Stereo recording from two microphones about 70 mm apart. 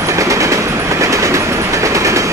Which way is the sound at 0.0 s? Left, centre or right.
Right.